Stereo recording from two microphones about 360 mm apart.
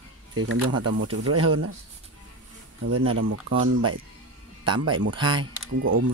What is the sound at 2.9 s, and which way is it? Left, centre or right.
Speech, right.